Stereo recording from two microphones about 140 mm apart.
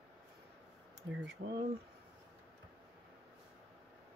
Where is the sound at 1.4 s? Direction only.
65° right (ahead or behind).